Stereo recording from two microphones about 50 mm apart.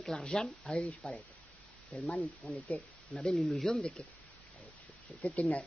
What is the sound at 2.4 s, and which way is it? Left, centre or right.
Speech, centre.